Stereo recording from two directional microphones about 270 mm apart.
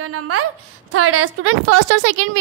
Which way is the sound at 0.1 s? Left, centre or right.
Right.